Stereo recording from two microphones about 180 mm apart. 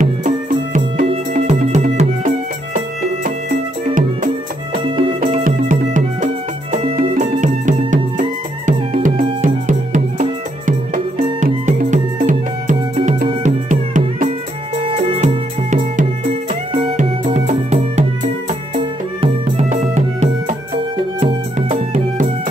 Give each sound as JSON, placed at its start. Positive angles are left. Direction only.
{"t": 1.3, "sound": "music", "side_deg": -45}
{"t": 4.7, "sound": "music", "side_deg": -30}
{"t": 5.2, "sound": "music", "side_deg": -45}